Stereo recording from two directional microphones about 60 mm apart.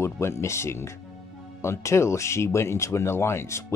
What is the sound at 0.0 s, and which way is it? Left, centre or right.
Speech, left.